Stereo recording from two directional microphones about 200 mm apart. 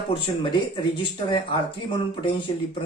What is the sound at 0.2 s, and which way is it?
Speech, 25° left (ahead or behind).